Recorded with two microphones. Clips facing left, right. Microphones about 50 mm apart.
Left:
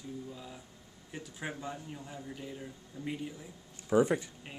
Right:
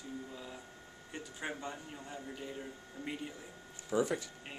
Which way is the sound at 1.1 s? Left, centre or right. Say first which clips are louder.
Left 1 dB; centre.